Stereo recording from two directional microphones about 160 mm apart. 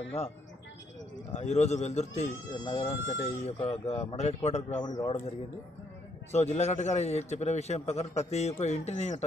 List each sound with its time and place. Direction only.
1.3 s a man's voice: 45° left (ahead or behind)
4.8 s a man's voice: 25° left (ahead or behind)
6.3 s a man's voice: 45° left (ahead or behind)